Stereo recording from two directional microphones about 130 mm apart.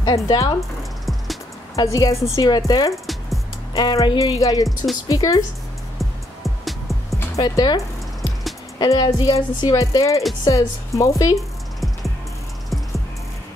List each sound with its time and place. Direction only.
0.0 s speech: 25° left (ahead or behind)
1.0 s music: centre (ahead or behind)
1.8 s speech: 25° left (ahead or behind)
3.7 s music: 35° left (ahead or behind)
5.0 s speech: 25° left (ahead or behind)
5.9 s music: centre (ahead or behind)
7.2 s speech: 25° left (ahead or behind)
11.3 s music: centre (ahead or behind)